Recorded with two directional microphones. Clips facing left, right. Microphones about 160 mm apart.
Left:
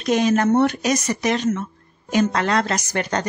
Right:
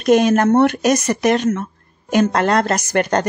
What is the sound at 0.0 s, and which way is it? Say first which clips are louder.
Speech: right 5 dB; 55° right (ahead or behind).